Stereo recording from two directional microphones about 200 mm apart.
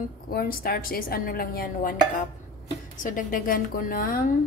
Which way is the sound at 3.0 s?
40° left (ahead or behind).